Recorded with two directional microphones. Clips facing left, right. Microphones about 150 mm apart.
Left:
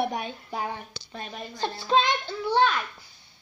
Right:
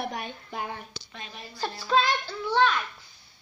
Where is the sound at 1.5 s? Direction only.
25° left (ahead or behind).